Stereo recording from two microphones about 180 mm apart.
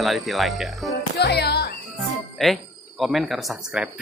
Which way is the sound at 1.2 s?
65° left (ahead or behind).